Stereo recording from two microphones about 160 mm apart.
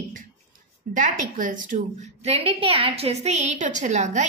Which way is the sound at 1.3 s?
55° right (ahead or behind).